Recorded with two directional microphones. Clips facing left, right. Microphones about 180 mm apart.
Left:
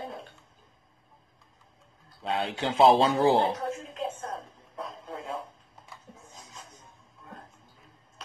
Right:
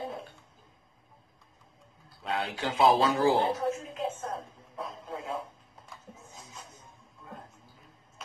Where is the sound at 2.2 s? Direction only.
25° left (ahead or behind).